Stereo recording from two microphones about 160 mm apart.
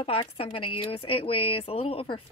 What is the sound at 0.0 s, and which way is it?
Speech, 35° left (ahead or behind).